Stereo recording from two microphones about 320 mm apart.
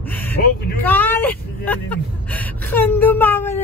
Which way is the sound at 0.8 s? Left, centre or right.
Centre.